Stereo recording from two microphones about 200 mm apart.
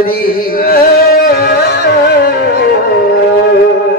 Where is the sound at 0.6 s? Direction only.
50° left (ahead or behind).